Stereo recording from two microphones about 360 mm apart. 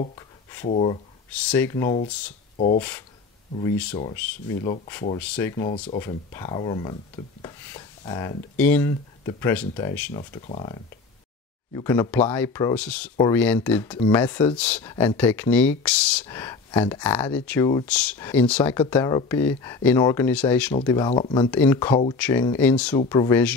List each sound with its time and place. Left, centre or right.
0.7 s speech: centre
2.5 s speech: centre
4.6 s speech: centre